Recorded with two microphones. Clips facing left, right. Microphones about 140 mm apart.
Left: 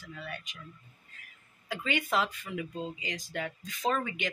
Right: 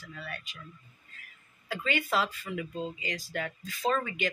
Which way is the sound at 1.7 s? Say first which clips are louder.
Right 1 dB; 20° left (ahead or behind).